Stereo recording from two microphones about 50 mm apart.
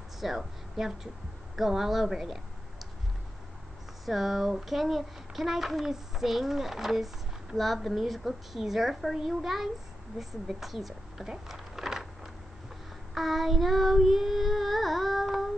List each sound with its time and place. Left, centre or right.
0.2 s a woman's voice: centre
4.0 s a child's voice: centre